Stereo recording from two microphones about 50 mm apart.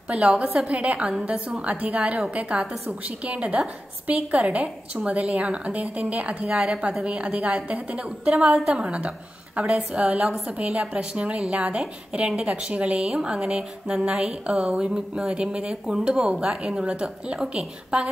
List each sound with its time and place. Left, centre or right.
0.1 s a woman's voice: right